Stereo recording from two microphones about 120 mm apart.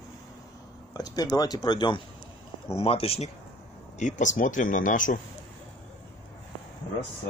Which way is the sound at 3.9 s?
90° left.